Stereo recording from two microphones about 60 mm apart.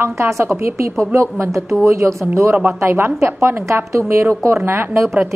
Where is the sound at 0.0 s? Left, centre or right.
Right.